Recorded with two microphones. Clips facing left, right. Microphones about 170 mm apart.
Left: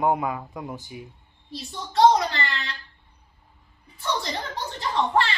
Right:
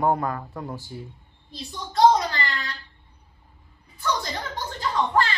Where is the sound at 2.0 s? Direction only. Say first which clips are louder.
Even; 25° left (ahead or behind).